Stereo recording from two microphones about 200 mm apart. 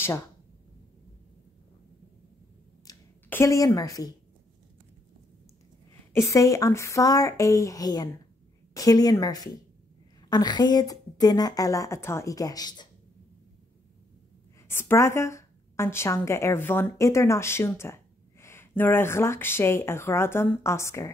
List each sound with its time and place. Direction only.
2.9 s a sound: 15° left (ahead or behind)
6.1 s a woman's voice: 15° left (ahead or behind)
14.7 s a woman's voice: 10° left (ahead or behind)